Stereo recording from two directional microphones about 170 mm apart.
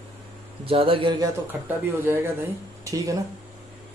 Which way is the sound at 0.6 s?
35° right (ahead or behind).